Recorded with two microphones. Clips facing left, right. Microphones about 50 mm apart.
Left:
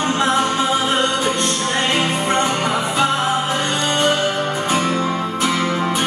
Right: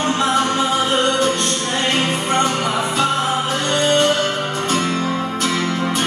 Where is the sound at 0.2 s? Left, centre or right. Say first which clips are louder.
Left 1 dB; centre.